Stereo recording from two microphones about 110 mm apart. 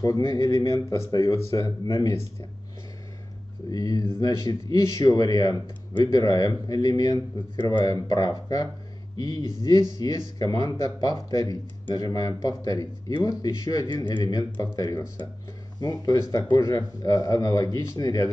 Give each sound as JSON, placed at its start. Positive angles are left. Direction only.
{"t": 0.0, "sound": "speech", "side_deg": 30}
{"t": 3.7, "sound": "speech", "side_deg": 35}
{"t": 9.7, "sound": "speech", "side_deg": 35}